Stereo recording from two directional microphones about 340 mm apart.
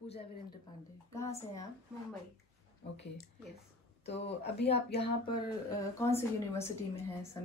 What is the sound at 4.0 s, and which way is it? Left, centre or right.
Speech, centre.